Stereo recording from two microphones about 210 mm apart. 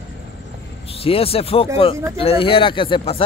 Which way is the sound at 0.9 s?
25° left (ahead or behind).